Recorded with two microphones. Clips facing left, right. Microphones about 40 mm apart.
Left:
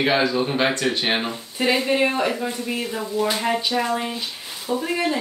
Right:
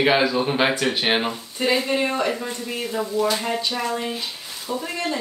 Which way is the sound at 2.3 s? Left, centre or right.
Centre.